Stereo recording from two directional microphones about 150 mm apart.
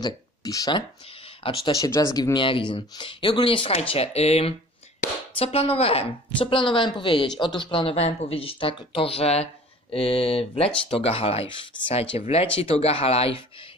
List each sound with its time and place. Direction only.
0.0 s speech: 25° left (ahead or behind)
1.7 s speech: 25° left (ahead or behind)
2.3 s speech: 35° left (ahead or behind)